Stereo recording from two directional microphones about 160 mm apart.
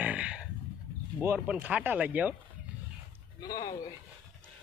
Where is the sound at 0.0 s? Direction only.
10° right (ahead or behind).